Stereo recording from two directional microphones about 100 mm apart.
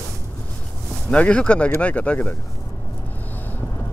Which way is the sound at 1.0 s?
10° left (ahead or behind).